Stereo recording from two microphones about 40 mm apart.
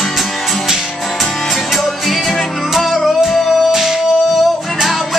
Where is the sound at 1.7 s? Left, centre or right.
Centre.